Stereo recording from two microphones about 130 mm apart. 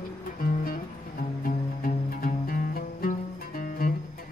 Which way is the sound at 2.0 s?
90° left.